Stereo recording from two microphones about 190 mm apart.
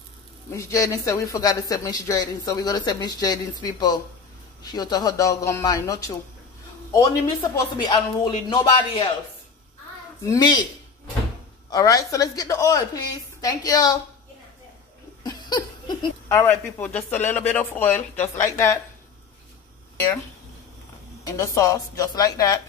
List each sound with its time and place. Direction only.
0.5 s a man's voice: 15° left (ahead or behind)
10.2 s speech: 20° left (ahead or behind)
11.7 s speech: 20° left (ahead or behind)
15.2 s a sound: 20° left (ahead or behind)
17.2 s speech: 35° left (ahead or behind)
17.5 s a man's voice: 10° left (ahead or behind)
21.3 s a man's voice: 15° left (ahead or behind)